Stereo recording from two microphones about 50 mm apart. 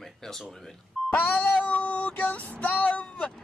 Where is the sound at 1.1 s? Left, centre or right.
Left.